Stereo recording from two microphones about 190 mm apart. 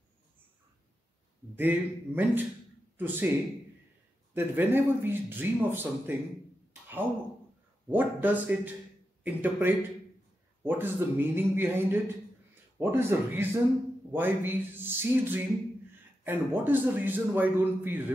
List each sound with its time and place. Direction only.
1.6 s a man's voice: 10° right (ahead or behind)
4.3 s a man's voice: 10° right (ahead or behind)
6.7 s a sound: 10° right (ahead or behind)
7.9 s a man's voice: 10° right (ahead or behind)